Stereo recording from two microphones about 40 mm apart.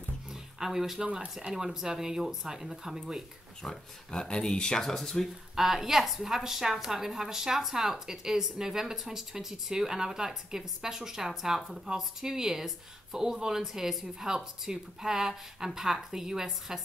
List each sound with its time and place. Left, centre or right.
0.3 s a sound: centre
1.4 s speech: centre
3.6 s speech: centre
4.8 s speech: centre
5.6 s speech: centre